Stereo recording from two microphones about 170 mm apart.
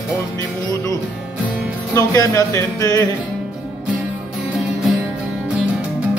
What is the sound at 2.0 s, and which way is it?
Speech, 20° left (ahead or behind).